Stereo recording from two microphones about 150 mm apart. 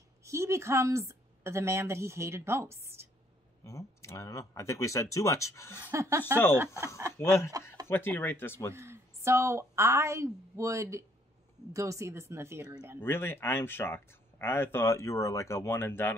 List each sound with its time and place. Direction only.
0.2 s speech: 20° right (ahead or behind)
3.6 s speech: 20° left (ahead or behind)
5.9 s speech: 20° right (ahead or behind)
7.5 s speech: 25° right (ahead or behind)
7.9 s speech: 15° left (ahead or behind)
8.7 s a woman's voice: 15° right (ahead or behind)
13.0 s speech: 15° left (ahead or behind)